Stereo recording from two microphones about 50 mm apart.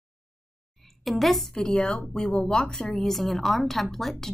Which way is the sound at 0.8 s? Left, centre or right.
Centre.